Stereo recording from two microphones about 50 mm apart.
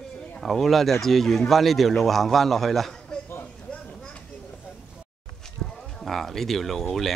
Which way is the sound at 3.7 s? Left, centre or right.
Centre.